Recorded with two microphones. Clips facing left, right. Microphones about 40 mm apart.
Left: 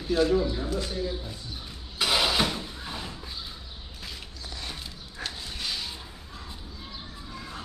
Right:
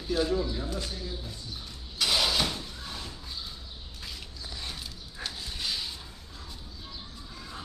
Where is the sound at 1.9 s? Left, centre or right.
Centre.